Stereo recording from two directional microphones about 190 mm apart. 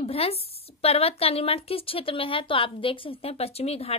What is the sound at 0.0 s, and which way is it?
A woman's voice, 30° left (ahead or behind).